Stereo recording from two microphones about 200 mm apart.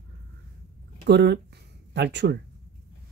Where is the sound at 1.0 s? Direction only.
55° right (ahead or behind).